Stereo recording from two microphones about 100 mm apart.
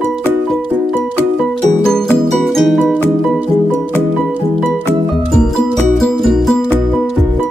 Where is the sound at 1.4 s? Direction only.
5° left (ahead or behind).